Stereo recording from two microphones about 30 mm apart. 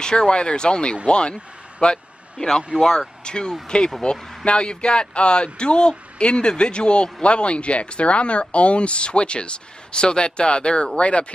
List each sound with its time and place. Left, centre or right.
0.0 s a man's voice: left
3.3 s a man's voice: left